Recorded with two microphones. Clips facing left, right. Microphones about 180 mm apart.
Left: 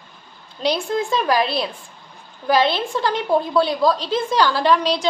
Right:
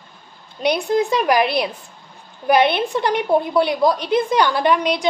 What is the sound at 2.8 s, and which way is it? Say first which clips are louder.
A woman's voice: right 2 dB; 20° right (ahead or behind).